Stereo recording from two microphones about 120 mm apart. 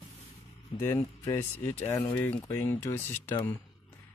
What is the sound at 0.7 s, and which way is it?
Speech, 20° left (ahead or behind).